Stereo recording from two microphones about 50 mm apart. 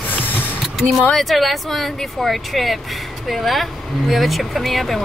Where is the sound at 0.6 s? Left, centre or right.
Centre.